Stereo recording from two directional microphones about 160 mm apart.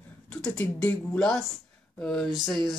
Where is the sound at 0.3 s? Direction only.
10° left (ahead or behind).